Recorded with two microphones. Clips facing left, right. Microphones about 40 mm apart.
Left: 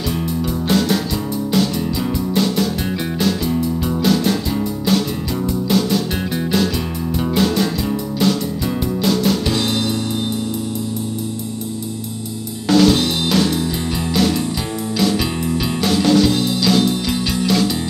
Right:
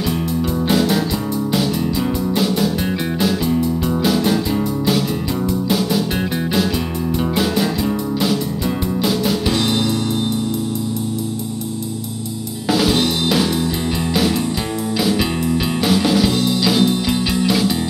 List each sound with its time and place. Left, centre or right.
3.4 s music: centre
8.2 s music: centre
12.6 s music: centre
15.0 s music: centre